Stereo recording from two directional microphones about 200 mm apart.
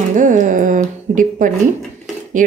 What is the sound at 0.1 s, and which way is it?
A woman's voice, 40° right (ahead or behind).